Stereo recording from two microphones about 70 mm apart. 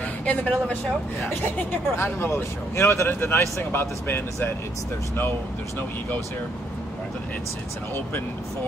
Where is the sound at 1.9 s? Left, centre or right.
Left.